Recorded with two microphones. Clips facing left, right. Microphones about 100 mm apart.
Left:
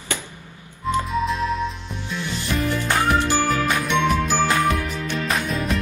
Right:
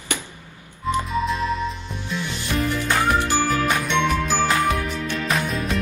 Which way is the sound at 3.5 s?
Centre (ahead or behind).